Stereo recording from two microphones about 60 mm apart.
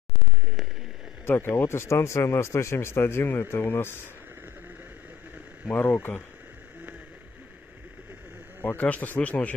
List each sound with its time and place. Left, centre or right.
1.2 s speech: left
5.7 s speech: left
8.5 s a man's voice: left